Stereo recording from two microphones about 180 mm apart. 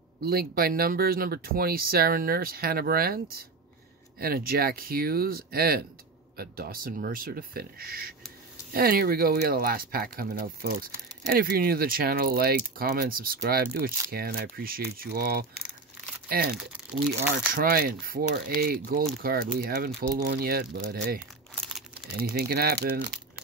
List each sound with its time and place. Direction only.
0.2 s speech: 60° right (ahead or behind)
16.5 s speech: 10° right (ahead or behind)
17.5 s speech: 50° right (ahead or behind)
22.3 s speech: 60° right (ahead or behind)